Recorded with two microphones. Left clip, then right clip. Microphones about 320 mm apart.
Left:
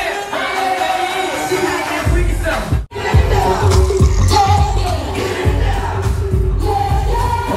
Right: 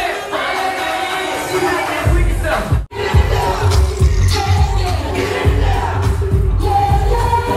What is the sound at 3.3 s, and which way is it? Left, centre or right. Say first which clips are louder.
Music: left 2 dB; centre.